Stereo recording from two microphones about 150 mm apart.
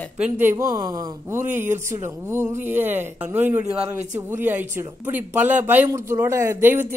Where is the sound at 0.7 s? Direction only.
25° right (ahead or behind).